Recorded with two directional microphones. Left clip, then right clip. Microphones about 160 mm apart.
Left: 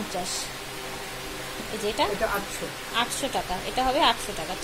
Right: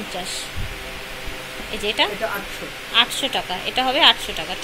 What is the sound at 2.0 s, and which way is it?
Speech, 5° left (ahead or behind).